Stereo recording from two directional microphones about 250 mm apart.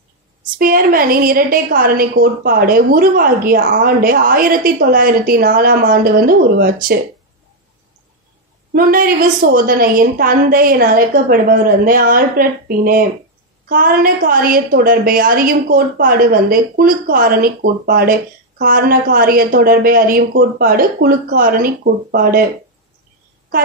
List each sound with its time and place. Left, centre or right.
0.6 s a woman's voice: right
8.7 s a woman's voice: right